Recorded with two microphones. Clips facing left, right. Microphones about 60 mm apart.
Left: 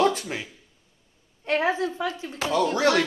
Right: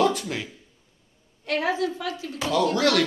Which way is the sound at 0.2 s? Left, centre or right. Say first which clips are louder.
Right 2 dB; centre.